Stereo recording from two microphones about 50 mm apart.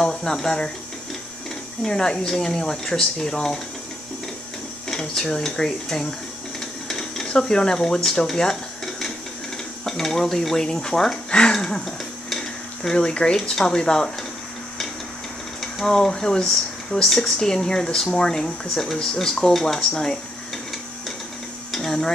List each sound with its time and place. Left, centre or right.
0.0 s speech: centre
1.9 s speech: centre
4.8 s speech: centre
6.9 s dishes: centre
7.2 s speech: centre
15.6 s speech: centre
21.7 s a sound: centre